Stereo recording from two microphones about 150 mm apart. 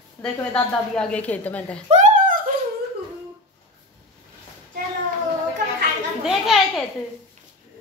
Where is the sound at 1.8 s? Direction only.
50° right (ahead or behind).